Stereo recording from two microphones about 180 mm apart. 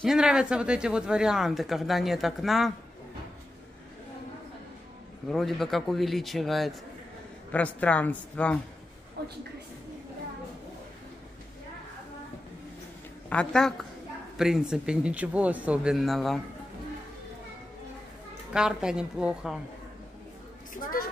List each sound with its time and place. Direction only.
0.0 s speech: 5° right (ahead or behind)
5.3 s speech: centre (ahead or behind)
9.2 s a man's voice: 65° right (ahead or behind)
13.3 s speech: 5° left (ahead or behind)
18.5 s speech: 5° right (ahead or behind)
20.7 s a woman's voice: 50° left (ahead or behind)